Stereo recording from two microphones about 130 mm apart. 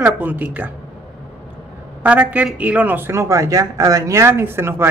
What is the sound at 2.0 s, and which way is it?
A woman's voice, 10° right (ahead or behind).